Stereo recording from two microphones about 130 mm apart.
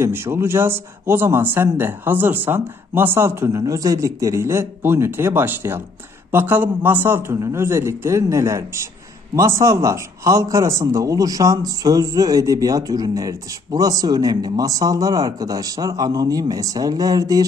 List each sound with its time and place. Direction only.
0.0 s a man's voice: 20° right (ahead or behind)